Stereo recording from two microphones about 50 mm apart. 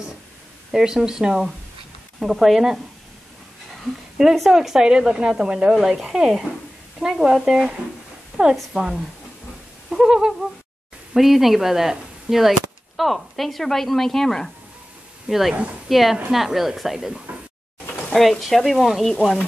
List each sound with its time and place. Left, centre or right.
0.7 s speech: centre
4.5 s a woman's voice: centre
9.8 s a sound: centre
11.1 s speech: centre
15.2 s speech: centre